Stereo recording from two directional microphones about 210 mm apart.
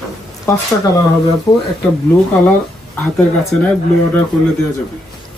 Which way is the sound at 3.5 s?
5° left (ahead or behind).